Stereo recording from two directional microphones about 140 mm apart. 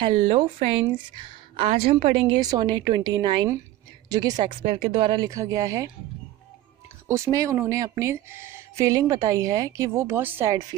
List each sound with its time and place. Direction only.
0.0 s a woman's voice: 40° right (ahead or behind)
2.2 s a woman's voice: 35° right (ahead or behind)
5.3 s a woman's voice: 25° right (ahead or behind)
7.1 s a woman's voice: 20° right (ahead or behind)